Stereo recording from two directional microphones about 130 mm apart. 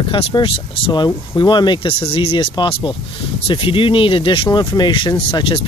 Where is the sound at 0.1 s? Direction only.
40° left (ahead or behind).